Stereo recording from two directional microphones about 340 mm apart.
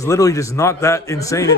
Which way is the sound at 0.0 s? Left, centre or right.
Centre.